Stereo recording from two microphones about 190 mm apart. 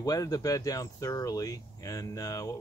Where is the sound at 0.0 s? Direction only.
20° left (ahead or behind).